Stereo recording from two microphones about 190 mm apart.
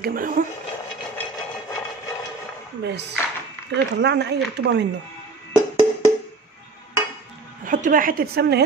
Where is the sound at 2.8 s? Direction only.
60° right (ahead or behind).